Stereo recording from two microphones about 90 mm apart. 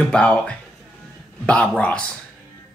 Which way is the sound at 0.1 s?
10° left (ahead or behind).